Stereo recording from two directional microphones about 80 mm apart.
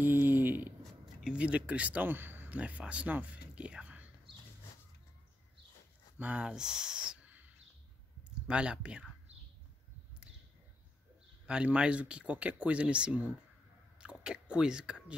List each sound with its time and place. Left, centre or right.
0.0 s a sound: right
1.0 s speech: centre
6.1 s speech: centre
11.4 s speech: centre